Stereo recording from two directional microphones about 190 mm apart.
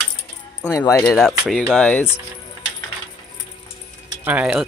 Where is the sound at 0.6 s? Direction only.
15° left (ahead or behind).